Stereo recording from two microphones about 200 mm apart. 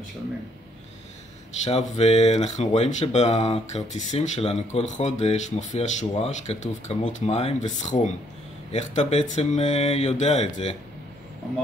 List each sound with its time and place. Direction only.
1.6 s speech: 35° left (ahead or behind)